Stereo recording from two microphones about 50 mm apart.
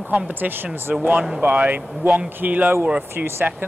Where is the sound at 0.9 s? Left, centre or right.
Right.